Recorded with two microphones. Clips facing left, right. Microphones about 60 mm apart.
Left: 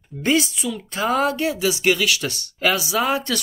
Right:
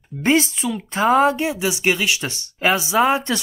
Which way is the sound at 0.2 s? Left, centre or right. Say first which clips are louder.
Right 2 dB; right.